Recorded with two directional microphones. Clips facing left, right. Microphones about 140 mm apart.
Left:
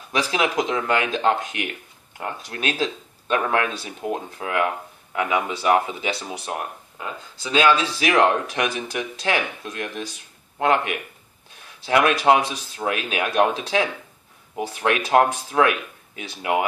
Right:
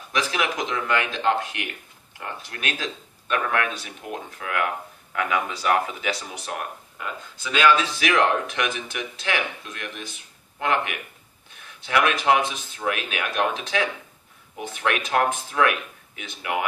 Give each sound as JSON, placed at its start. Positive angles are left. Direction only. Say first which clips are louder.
{"t": 0.1, "sound": "speech", "louder": "left 3 dB", "side_deg": 30}